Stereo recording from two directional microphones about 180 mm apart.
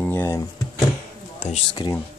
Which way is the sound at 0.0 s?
10° left (ahead or behind).